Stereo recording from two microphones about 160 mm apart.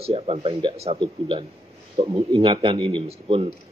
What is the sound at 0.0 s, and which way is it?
A man's voice, 35° right (ahead or behind).